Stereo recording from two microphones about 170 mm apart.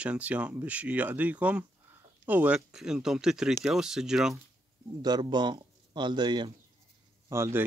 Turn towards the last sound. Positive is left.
turn(degrees=-15)  # may be behind; listen again after turning